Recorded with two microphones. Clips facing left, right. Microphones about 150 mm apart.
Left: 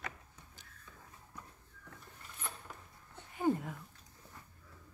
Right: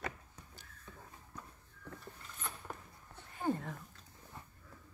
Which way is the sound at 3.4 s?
10° left (ahead or behind).